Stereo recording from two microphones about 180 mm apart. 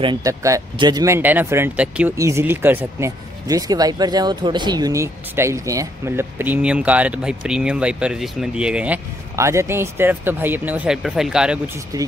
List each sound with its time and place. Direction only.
0.0 s speech: 20° right (ahead or behind); by 11.7 s 5° right (ahead or behind)
11.9 s speech: 20° right (ahead or behind)